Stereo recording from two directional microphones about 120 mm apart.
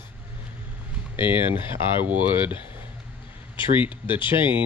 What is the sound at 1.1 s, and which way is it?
Speech, 15° right (ahead or behind).